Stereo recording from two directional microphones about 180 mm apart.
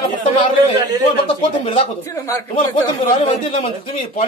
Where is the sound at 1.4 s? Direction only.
30° left (ahead or behind).